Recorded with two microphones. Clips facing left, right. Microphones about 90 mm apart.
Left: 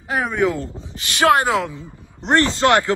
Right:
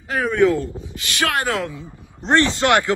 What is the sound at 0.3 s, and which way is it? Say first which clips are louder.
Speech: right 5 dB; 5° left (ahead or behind).